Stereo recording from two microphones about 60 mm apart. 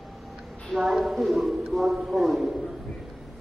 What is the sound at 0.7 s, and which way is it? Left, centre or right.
A woman's voice, centre.